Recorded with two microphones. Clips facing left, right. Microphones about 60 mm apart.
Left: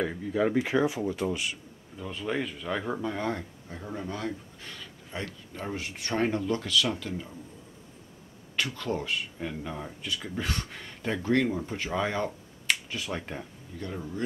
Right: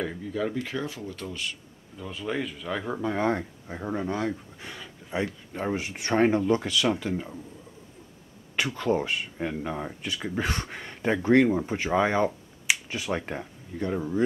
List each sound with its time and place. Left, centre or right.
0.0 s speech: centre
2.0 s speech: centre
3.0 s speech: centre
3.3 s speech: right
5.8 s speech: centre
8.7 s speech: centre
10.0 s speech: centre
10.7 s speech: right
11.9 s finger snapping: centre
12.7 s speech: centre
13.3 s speech: right